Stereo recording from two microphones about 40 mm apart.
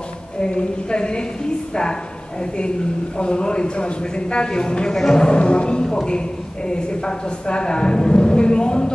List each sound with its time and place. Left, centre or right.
0.4 s a woman's voice: left
3.2 s a woman's voice: left